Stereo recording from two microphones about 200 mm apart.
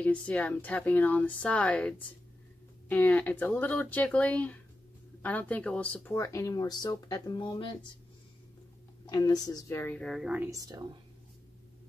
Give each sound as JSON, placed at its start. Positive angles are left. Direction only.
{"t": 0.0, "sound": "speech", "side_deg": 5}
{"t": 9.0, "sound": "speech", "side_deg": 20}
{"t": 10.5, "sound": "speech", "side_deg": -20}